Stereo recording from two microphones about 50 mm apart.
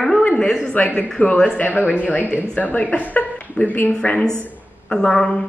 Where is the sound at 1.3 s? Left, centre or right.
Centre.